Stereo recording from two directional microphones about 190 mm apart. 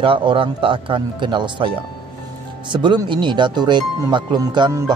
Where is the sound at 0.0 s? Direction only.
25° right (ahead or behind).